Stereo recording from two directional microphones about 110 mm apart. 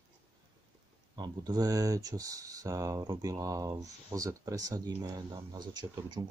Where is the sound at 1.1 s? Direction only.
40° right (ahead or behind).